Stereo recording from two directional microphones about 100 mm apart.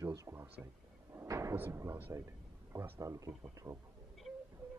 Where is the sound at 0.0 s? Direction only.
30° right (ahead or behind).